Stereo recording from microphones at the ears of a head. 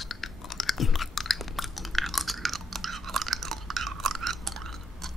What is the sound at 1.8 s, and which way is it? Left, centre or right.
Chewing, centre.